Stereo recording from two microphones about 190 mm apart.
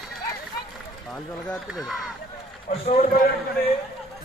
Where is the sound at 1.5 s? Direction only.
Centre (ahead or behind).